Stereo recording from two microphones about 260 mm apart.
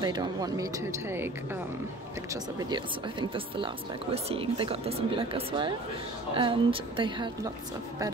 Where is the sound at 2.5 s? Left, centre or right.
Centre.